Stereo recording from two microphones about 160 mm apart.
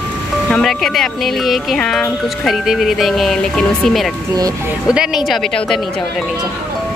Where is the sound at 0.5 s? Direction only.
Centre (ahead or behind).